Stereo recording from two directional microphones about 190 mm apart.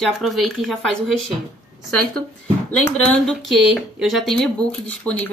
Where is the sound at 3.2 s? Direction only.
Centre (ahead or behind).